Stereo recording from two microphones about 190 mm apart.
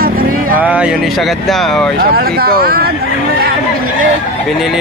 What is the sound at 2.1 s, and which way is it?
Speech, 50° right (ahead or behind).